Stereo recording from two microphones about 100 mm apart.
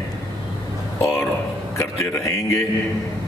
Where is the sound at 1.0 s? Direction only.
25° left (ahead or behind).